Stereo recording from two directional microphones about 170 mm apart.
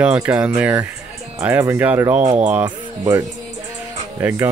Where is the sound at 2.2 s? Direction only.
40° right (ahead or behind).